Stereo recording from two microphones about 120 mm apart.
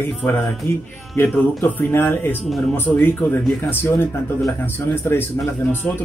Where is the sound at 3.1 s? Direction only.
15° left (ahead or behind).